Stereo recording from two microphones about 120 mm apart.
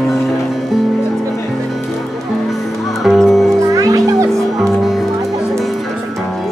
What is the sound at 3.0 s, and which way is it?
Music, centre (ahead or behind).